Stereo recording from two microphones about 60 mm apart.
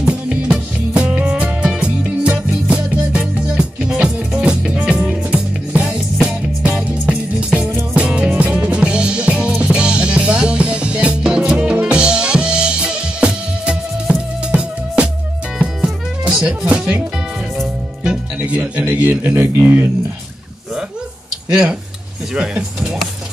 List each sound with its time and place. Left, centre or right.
0.0 s music: centre
5.7 s music: right
8.4 s music: right
8.8 s music: centre
18.6 s a sound: centre
19.0 s a man's voice: right
22.3 s speech: centre